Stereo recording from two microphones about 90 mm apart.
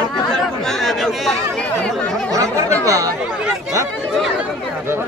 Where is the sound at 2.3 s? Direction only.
35° right (ahead or behind).